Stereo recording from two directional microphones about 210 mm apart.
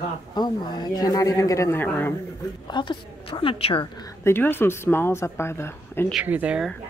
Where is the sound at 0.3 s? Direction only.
20° left (ahead or behind).